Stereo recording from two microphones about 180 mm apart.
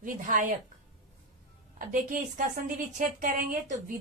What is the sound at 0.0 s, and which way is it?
Speech, 50° right (ahead or behind).